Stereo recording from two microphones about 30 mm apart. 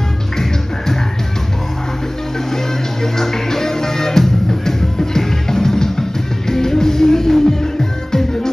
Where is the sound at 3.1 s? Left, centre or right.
Centre.